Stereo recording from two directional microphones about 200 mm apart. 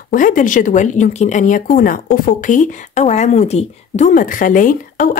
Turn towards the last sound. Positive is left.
turn(degrees=40)  # may be behind; listen again after turning